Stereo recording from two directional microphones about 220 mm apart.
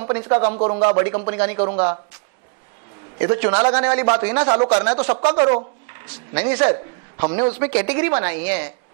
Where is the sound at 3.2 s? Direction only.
10° right (ahead or behind).